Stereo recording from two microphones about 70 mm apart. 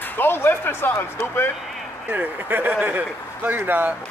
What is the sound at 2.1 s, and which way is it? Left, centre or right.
A man's voice, right.